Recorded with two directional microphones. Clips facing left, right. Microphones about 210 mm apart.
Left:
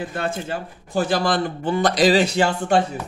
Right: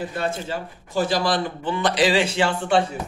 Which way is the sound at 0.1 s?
50° left (ahead or behind).